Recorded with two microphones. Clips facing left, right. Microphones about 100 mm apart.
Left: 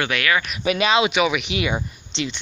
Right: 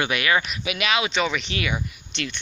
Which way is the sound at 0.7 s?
30° left (ahead or behind).